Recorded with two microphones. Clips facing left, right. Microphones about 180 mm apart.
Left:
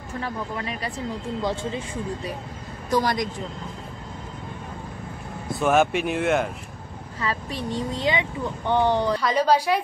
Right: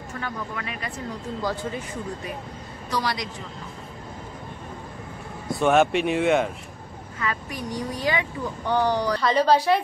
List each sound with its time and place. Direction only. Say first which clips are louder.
0.2 s speech: left 3 dB; 35° left (ahead or behind)
2.9 s speech: left 5 dB; 50° left (ahead or behind)
5.5 s speech: right 1 dB; centre (ahead or behind)
7.2 s speech: left 1 dB; 30° left (ahead or behind)
9.2 s speech: right 1 dB; 10° left (ahead or behind)